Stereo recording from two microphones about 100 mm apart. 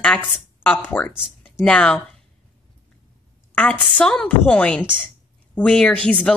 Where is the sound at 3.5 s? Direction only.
15° left (ahead or behind).